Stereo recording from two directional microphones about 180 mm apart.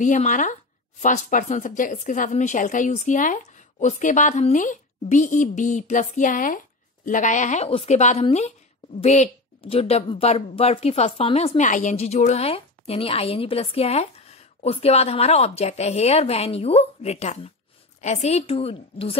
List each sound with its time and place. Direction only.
0.0 s a woman's voice: 45° left (ahead or behind)